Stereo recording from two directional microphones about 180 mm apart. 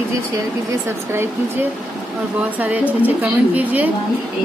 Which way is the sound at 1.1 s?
15° right (ahead or behind).